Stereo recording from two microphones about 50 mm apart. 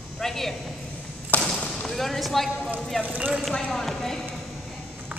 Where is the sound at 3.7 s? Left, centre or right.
Centre.